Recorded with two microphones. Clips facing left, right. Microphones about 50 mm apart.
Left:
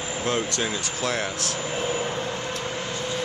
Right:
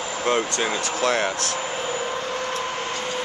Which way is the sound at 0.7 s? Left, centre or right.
Right.